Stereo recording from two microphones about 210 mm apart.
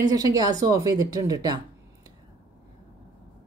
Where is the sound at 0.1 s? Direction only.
15° right (ahead or behind).